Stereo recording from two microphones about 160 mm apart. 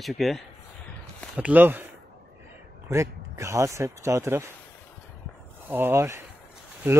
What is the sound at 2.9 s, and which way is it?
Speech, 20° right (ahead or behind).